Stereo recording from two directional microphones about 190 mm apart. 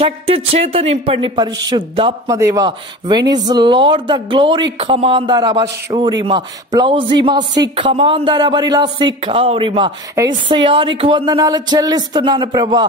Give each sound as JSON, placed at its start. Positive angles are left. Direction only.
{"t": 0.0, "sound": "a man's voice", "side_deg": -30}